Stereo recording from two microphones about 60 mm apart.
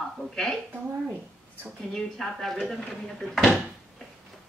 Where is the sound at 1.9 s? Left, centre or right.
Centre.